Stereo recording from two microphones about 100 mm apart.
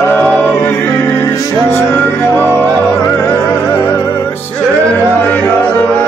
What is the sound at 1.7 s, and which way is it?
Music, 20° left (ahead or behind).